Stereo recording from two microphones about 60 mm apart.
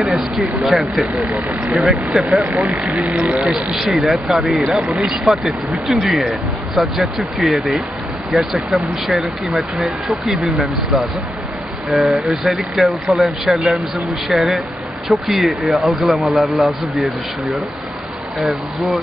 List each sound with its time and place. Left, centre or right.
0.1 s speech: centre
1.3 s speech: right
1.7 s speech: centre
2.7 s speech: right
3.7 s speech: centre
18.4 s speech: centre